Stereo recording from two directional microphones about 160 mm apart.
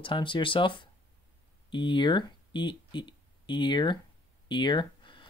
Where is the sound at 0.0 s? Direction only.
30° left (ahead or behind).